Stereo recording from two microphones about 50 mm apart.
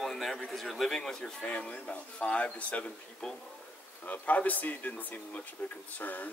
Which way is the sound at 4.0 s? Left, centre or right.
Left.